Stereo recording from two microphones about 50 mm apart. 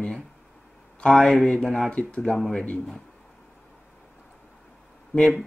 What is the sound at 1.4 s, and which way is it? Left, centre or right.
Speech, centre.